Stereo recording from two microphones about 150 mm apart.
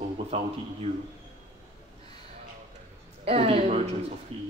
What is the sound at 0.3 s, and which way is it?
Speech, 40° right (ahead or behind).